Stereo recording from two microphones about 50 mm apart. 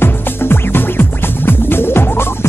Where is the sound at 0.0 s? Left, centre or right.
Left.